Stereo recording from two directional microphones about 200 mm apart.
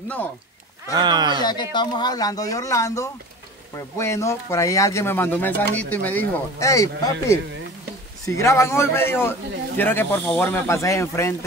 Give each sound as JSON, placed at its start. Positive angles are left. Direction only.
{"t": 0.9, "sound": "speech", "side_deg": -20}
{"t": 1.4, "sound": "speech", "side_deg": 20}